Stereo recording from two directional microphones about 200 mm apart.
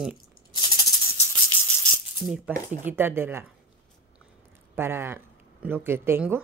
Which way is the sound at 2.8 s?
10° right (ahead or behind).